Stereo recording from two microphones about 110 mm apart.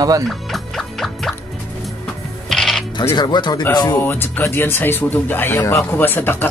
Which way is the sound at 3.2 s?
40° left (ahead or behind).